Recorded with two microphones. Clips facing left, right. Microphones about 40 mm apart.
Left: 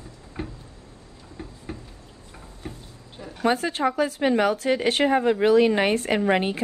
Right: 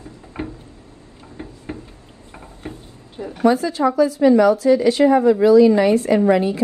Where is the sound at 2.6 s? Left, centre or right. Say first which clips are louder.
Right 4 dB; right.